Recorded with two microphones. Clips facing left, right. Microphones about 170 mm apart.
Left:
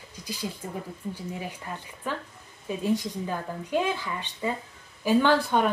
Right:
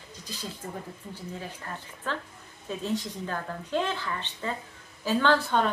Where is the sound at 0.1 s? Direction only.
10° left (ahead or behind).